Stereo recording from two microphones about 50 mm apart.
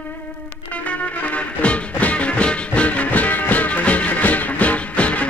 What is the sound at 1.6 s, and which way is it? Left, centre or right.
Music, left.